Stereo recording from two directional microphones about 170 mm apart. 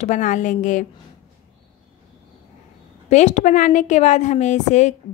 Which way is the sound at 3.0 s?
40° left (ahead or behind).